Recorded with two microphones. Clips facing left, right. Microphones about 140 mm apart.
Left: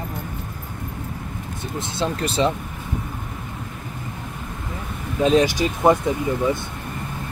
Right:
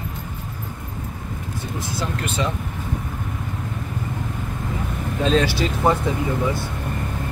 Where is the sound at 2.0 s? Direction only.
30° left (ahead or behind).